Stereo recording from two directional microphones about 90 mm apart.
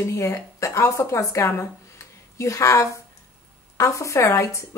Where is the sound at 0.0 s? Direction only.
35° left (ahead or behind).